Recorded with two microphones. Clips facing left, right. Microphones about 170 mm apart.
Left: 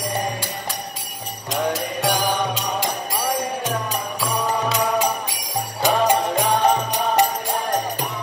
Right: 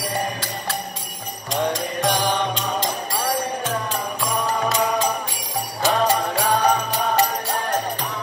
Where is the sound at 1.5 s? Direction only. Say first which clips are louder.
Even; 5° left (ahead or behind).